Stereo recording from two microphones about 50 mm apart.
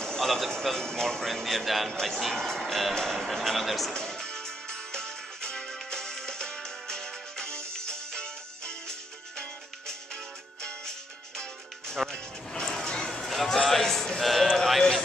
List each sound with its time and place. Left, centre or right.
0.0 s speech: centre
3.9 s music: centre
12.1 s music: centre
14.7 s run: centre